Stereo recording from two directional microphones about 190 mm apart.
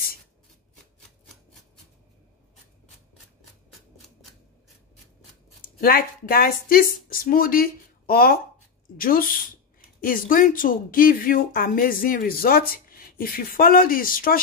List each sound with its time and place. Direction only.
5.8 s a woman's voice: 50° left (ahead or behind)